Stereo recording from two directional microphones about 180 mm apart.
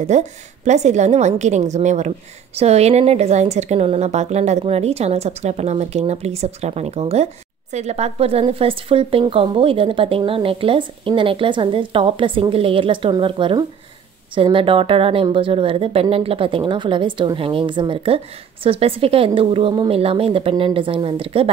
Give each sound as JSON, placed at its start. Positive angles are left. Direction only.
{"t": 0.0, "sound": "a woman's voice", "side_deg": -40}